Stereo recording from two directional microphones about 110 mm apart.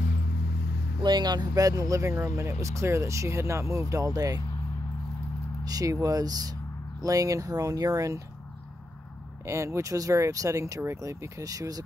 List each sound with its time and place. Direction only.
1.0 s speech: 40° right (ahead or behind)
5.7 s speech: 35° right (ahead or behind)
9.5 s speech: 25° right (ahead or behind)